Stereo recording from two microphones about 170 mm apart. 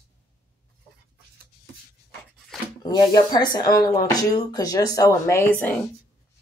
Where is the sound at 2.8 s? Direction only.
25° left (ahead or behind).